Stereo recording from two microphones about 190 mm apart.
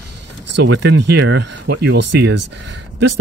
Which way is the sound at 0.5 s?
65° right (ahead or behind).